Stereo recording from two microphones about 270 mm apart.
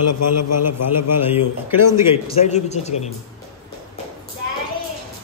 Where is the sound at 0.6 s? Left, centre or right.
Centre.